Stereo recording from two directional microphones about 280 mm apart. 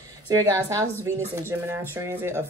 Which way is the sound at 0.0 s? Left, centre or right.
Centre.